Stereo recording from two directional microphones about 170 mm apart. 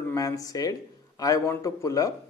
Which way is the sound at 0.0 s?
20° left (ahead or behind).